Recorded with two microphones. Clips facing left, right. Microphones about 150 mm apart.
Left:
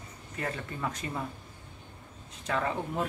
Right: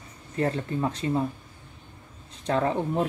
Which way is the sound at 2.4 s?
35° right (ahead or behind).